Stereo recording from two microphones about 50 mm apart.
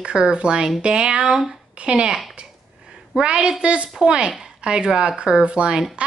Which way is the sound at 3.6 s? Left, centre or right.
Right.